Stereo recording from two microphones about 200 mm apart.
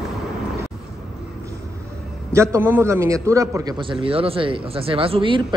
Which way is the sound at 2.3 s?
15° right (ahead or behind).